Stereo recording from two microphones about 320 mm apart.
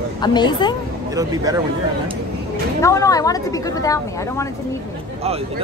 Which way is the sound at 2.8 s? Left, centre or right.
Centre.